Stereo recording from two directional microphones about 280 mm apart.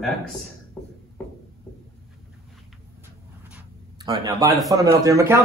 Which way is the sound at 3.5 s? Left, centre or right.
Centre.